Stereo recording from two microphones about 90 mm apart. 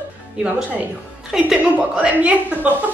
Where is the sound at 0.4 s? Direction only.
10° right (ahead or behind).